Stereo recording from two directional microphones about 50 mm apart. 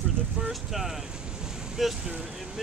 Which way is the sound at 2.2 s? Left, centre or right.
Centre.